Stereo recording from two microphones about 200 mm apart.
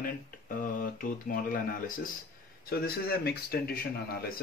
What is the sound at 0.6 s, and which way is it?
Speech, 45° left (ahead or behind).